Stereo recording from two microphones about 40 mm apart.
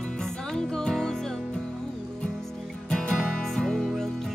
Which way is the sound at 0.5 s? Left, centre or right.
Centre.